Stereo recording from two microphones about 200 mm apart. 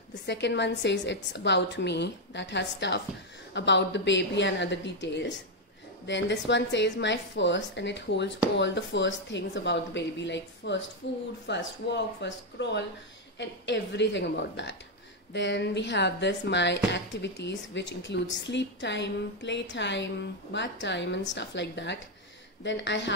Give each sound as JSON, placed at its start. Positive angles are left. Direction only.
{"t": 0.1, "sound": "speech", "side_deg": 60}